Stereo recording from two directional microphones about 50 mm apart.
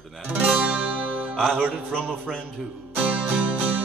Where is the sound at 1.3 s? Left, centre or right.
Centre.